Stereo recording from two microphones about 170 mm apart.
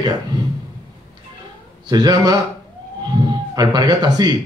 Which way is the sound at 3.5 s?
25° right (ahead or behind).